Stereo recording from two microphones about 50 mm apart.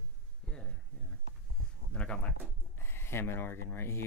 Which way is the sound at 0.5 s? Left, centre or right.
Centre.